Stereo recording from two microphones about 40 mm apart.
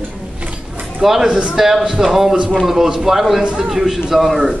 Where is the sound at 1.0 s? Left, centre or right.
Centre.